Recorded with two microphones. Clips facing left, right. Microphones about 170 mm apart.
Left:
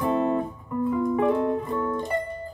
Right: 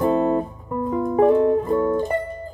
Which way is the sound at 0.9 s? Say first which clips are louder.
Right 6 dB; 45° right (ahead or behind).